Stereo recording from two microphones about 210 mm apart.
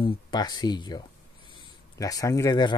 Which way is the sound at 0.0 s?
20° left (ahead or behind).